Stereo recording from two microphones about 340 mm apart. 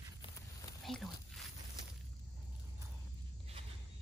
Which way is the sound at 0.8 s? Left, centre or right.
Centre.